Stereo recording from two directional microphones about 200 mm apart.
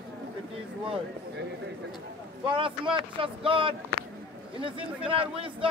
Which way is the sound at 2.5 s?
25° right (ahead or behind).